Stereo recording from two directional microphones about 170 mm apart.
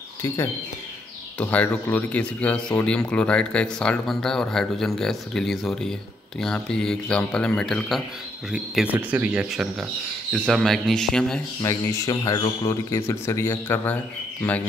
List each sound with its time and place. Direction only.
1.4 s speech: 10° left (ahead or behind)
11.6 s speech: 20° left (ahead or behind)